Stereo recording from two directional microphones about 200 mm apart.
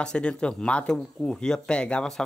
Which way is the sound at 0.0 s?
5° left (ahead or behind).